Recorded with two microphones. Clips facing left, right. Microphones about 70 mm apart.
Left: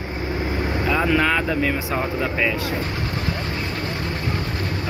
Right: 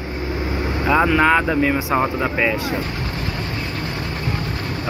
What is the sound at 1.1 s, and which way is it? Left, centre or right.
Speech, right.